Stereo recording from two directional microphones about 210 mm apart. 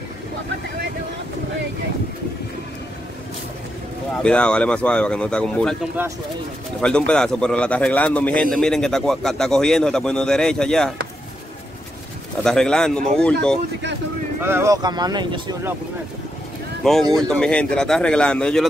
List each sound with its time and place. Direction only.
4.2 s a man's voice: 5° left (ahead or behind)
6.0 s speech: 10° right (ahead or behind)
6.8 s a man's voice: 5° left (ahead or behind)
12.4 s a man's voice: 5° left (ahead or behind)
14.4 s speech: 10° right (ahead or behind)
16.8 s a man's voice: centre (ahead or behind)